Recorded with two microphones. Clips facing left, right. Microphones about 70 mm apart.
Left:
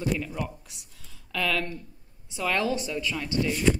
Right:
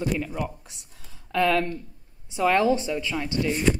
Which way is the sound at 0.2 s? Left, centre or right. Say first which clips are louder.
Right 3 dB; centre.